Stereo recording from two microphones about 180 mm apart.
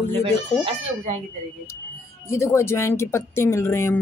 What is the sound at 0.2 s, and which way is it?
Speech, 35° right (ahead or behind).